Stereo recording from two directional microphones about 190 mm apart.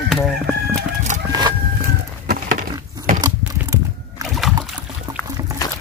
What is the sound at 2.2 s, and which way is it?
Wood, 45° right (ahead or behind).